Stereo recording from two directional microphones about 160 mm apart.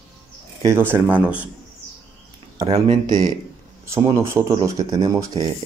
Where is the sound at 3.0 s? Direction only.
25° right (ahead or behind).